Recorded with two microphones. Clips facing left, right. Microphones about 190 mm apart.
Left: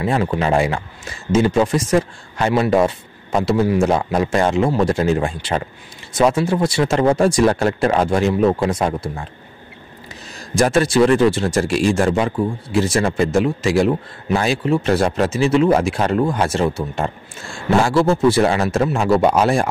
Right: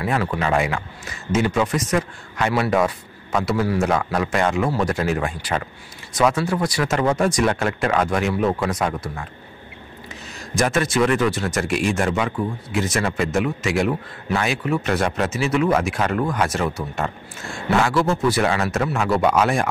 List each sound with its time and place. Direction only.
0.0 s speech: 25° left (ahead or behind)
10.5 s speech: 30° left (ahead or behind)